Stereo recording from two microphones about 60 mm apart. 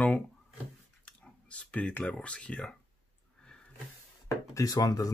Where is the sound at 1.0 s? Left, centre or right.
Left.